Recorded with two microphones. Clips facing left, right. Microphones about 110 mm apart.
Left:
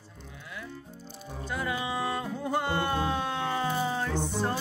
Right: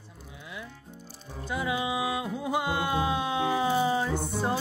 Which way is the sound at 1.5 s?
15° right (ahead or behind).